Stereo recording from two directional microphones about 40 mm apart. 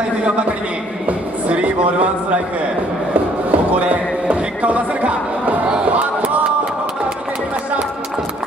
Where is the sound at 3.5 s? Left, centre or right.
Right.